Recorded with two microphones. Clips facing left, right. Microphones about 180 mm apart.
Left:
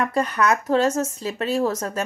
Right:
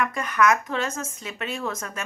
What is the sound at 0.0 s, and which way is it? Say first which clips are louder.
A woman's voice: left 1 dB; 35° left (ahead or behind).